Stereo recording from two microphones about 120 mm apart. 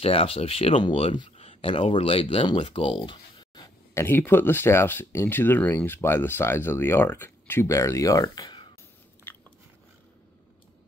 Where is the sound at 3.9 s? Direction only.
20° left (ahead or behind).